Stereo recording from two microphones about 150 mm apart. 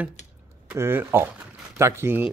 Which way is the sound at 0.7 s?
15° right (ahead or behind).